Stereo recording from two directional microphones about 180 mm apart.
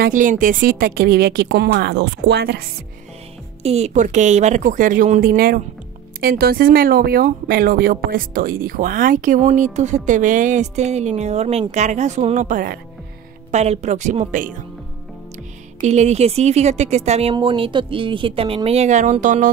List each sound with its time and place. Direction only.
0.0 s speech: 45° right (ahead or behind); by 2.6 s 65° right (ahead or behind)
3.6 s a woman's voice: 35° right (ahead or behind)
15.8 s a woman's voice: 40° right (ahead or behind)